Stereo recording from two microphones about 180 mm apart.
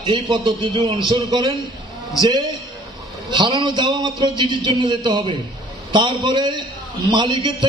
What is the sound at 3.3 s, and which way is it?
Speech, 25° right (ahead or behind).